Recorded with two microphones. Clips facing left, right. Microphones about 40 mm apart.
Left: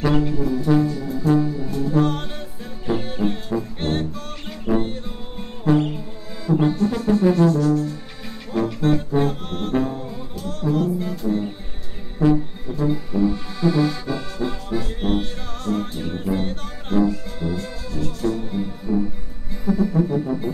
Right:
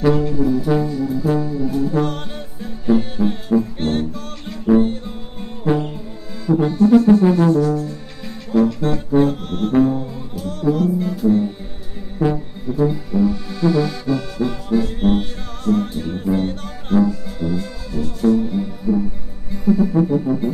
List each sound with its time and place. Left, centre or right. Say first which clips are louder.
0.2 s brass instrument: right 4 dB; centre
0.9 s trombone: right 1 dB; centre
1.7 s music: right 1 dB; centre
7.5 s music: right 2 dB; right
8.8 s music: right 3 dB; centre
20.1 s brass instrument: right 4 dB; centre